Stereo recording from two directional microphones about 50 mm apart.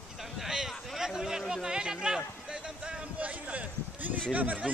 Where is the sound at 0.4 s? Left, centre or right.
Centre.